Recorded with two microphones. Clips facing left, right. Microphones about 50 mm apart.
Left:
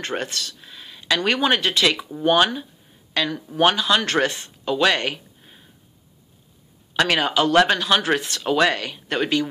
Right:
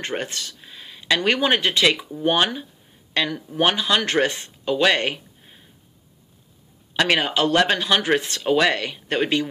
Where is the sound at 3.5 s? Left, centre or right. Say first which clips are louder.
Left 2 dB; right.